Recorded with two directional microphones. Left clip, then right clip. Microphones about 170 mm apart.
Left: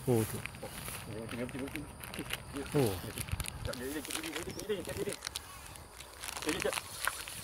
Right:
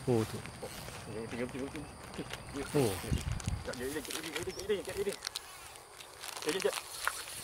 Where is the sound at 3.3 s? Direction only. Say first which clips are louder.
Even; 60° left (ahead or behind).